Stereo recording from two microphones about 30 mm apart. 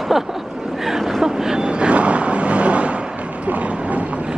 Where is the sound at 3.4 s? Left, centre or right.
Right.